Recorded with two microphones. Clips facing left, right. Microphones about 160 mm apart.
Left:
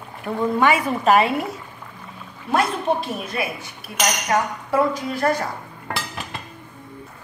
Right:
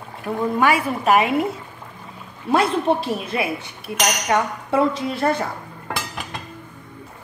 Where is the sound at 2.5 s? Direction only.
30° right (ahead or behind).